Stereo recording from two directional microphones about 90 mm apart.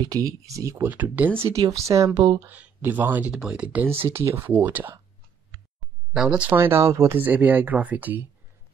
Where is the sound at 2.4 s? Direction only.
20° right (ahead or behind).